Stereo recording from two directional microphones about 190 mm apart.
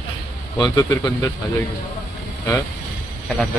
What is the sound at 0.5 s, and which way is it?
Speech, 20° left (ahead or behind).